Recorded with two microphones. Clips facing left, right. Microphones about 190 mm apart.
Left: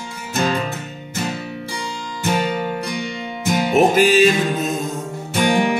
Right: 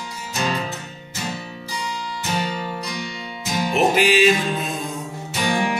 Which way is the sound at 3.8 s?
45° left (ahead or behind).